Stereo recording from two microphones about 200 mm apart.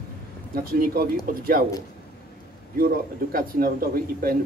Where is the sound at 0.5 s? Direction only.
45° right (ahead or behind).